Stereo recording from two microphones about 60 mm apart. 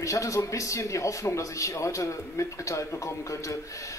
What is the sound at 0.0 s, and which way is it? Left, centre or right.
Speech, left.